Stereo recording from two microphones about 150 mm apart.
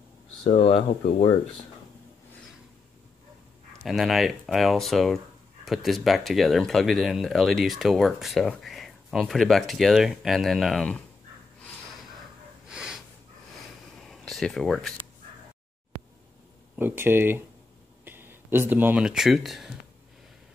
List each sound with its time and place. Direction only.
0.4 s speech: 45° left (ahead or behind)
3.8 s speech: centre (ahead or behind)
12.6 s snort: 5° right (ahead or behind)
13.9 s a sound: centre (ahead or behind)
16.7 s speech: 15° right (ahead or behind)